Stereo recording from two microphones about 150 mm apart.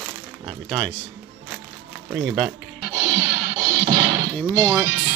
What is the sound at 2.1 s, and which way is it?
Speech, centre (ahead or behind).